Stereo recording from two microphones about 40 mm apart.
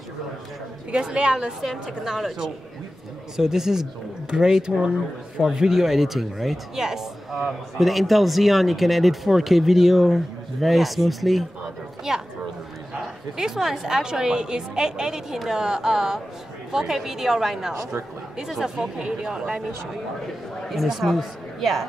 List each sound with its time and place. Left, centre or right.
0.9 s a woman's voice: right
1.6 s a woman's voice: centre
12.1 s a woman's voice: centre
13.4 s a woman's voice: centre
20.7 s a man's voice: centre